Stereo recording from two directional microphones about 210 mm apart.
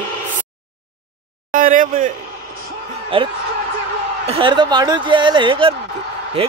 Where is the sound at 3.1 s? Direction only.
25° right (ahead or behind).